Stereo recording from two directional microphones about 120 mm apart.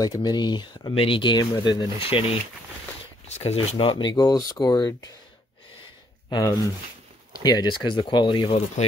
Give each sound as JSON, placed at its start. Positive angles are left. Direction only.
{"t": 0.0, "sound": "speech", "side_deg": 30}
{"t": 2.0, "sound": "speech", "side_deg": 50}
{"t": 3.3, "sound": "speech", "side_deg": 65}
{"t": 3.7, "sound": "speech", "side_deg": 45}
{"t": 6.3, "sound": "speech", "side_deg": 35}
{"t": 8.8, "sound": "speech", "side_deg": 75}